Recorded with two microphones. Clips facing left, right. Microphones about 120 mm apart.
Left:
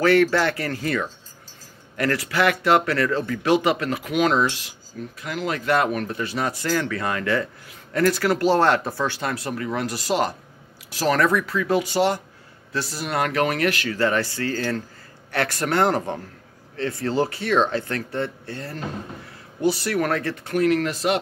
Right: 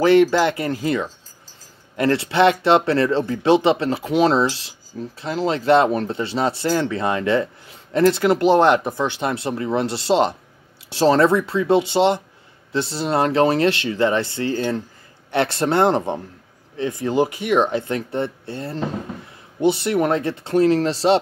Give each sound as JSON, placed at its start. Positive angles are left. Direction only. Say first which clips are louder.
{"t": 0.0, "sound": "speech", "louder": "right 3 dB", "side_deg": -20}